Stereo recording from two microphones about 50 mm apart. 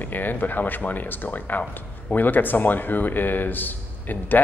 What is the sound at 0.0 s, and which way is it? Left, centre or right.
Speech, left.